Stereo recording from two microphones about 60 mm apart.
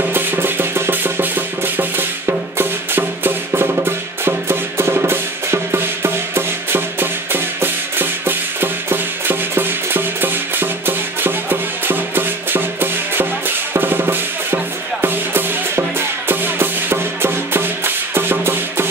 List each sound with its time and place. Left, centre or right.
0.1 s music: right